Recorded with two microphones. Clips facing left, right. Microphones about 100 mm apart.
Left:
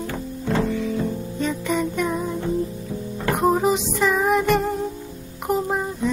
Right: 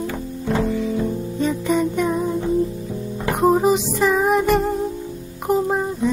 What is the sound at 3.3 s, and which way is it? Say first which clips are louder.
Music: right 3 dB; centre (ahead or behind).